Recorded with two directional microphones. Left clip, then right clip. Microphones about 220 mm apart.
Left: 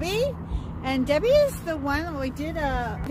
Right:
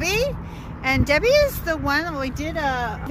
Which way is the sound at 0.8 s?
15° right (ahead or behind).